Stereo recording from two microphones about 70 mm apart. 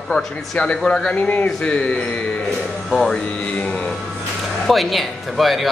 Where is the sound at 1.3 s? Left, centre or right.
Left.